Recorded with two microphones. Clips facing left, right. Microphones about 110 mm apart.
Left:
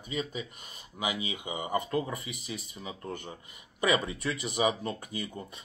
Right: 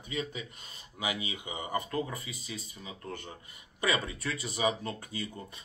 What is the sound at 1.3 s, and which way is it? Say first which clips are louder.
Speech: left 3 dB; 20° left (ahead or behind).